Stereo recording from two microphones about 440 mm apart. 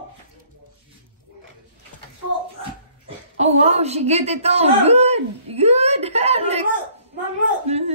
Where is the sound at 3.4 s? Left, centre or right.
Centre.